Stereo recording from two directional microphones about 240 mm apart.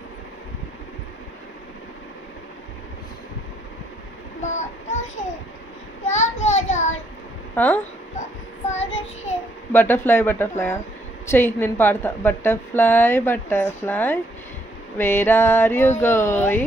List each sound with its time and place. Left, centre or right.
4.4 s child singing: left
6.0 s a sound: left
7.5 s a woman's voice: centre
8.6 s child singing: left
9.7 s a woman's voice: centre